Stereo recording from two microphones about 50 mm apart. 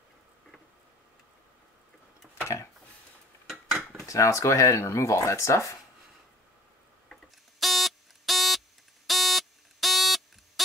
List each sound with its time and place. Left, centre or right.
2.4 s a sound: left
3.9 s speech: left
7.6 s buzzer: centre